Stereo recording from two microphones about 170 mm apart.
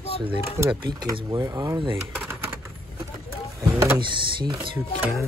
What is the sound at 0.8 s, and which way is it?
Speech, 25° right (ahead or behind).